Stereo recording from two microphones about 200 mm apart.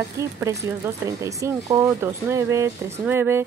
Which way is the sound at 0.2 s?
15° right (ahead or behind).